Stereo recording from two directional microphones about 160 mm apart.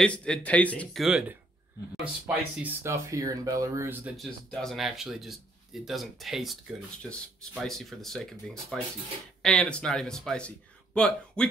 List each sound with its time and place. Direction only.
0.0 s speech: 5° left (ahead or behind)
2.2 s speech: 15° right (ahead or behind)
4.2 s speech: centre (ahead or behind)